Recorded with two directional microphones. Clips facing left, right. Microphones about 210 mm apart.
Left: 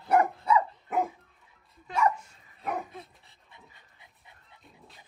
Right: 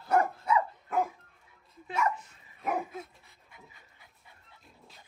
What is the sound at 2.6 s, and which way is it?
Dog, centre (ahead or behind).